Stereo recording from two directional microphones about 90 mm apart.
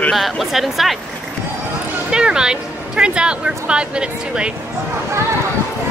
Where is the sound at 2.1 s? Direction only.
10° right (ahead or behind).